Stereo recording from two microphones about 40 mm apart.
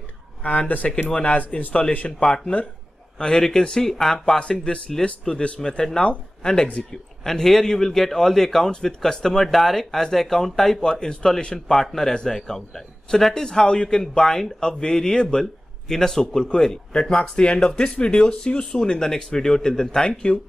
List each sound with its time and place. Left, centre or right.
0.4 s speech: left
2.1 s a man's voice: centre
4.4 s speech: left
5.6 s speech: centre
6.0 s a man's voice: left
7.2 s a man's voice: centre